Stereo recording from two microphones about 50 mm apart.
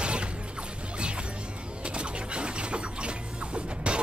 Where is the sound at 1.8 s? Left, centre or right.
Right.